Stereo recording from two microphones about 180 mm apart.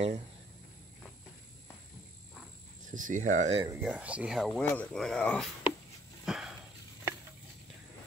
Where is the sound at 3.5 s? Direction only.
25° right (ahead or behind).